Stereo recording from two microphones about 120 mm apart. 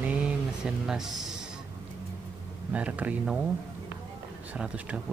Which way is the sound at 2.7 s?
10° right (ahead or behind).